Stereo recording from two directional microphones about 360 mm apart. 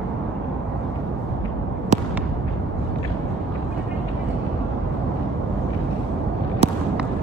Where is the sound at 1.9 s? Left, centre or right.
Centre.